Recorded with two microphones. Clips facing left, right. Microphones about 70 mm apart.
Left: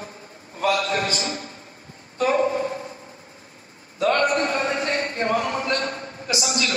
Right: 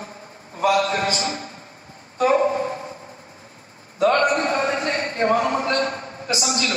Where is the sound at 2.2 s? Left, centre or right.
Right.